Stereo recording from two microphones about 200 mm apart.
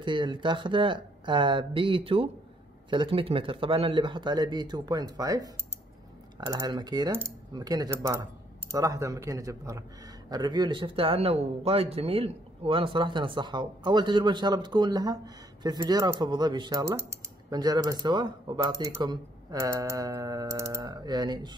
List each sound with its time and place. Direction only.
0.0 s speech: 25° right (ahead or behind)
6.5 s speech: 20° right (ahead or behind)